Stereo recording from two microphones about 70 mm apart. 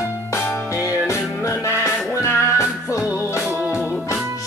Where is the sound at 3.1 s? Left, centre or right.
Left.